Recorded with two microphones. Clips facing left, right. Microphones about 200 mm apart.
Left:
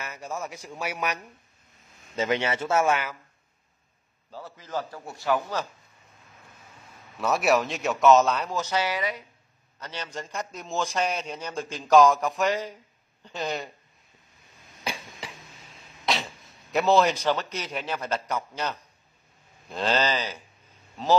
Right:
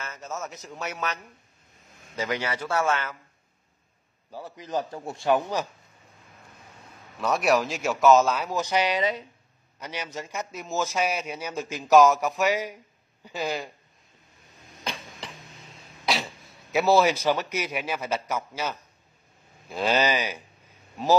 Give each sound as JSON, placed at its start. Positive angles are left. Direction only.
{"t": 0.0, "sound": "a man's voice", "side_deg": 15}
{"t": 2.1, "sound": "speech", "side_deg": 25}
{"t": 4.3, "sound": "a man's voice", "side_deg": -15}
{"t": 7.2, "sound": "a man's voice", "side_deg": 5}
{"t": 14.9, "sound": "a sound", "side_deg": 5}
{"t": 16.1, "sound": "throat clearing", "side_deg": 0}
{"t": 16.7, "sound": "a man's voice", "side_deg": -5}